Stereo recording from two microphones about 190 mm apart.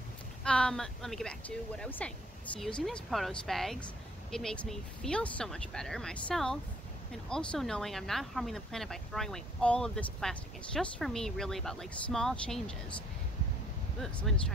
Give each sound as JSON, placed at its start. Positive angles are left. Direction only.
{"t": 0.4, "sound": "speech", "side_deg": 5}
{"t": 13.9, "sound": "speech", "side_deg": 0}